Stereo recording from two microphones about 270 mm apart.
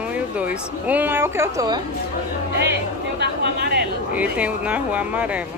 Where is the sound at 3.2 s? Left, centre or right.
Right.